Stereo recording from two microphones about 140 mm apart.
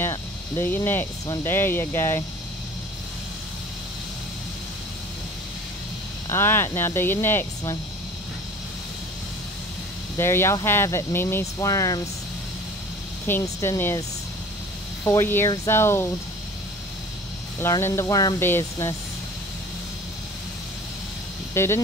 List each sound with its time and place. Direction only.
0.0 s cricket: 15° left (ahead or behind)
1.4 s speech: 15° left (ahead or behind)
6.2 s speech: 15° left (ahead or behind)
10.1 s speech: 20° left (ahead or behind)
13.3 s speech: 20° left (ahead or behind)
15.0 s speech: 15° left (ahead or behind)
17.6 s speech: 20° left (ahead or behind)
21.6 s speech: 20° left (ahead or behind)